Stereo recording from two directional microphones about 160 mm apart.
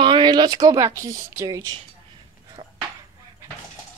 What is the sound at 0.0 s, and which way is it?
Speech, 30° right (ahead or behind).